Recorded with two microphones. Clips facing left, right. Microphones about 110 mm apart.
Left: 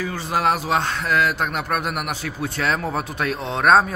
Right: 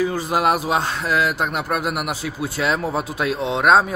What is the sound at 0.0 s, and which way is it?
A man's voice, 15° right (ahead or behind).